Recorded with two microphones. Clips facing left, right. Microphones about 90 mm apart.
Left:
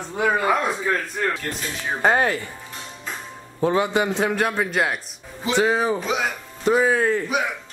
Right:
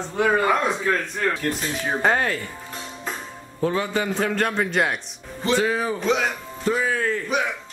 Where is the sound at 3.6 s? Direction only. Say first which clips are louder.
Left 3 dB; 20° left (ahead or behind); by 5.0 s centre (ahead or behind).